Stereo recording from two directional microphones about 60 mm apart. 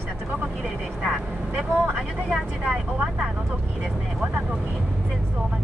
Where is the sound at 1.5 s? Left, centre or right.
Centre.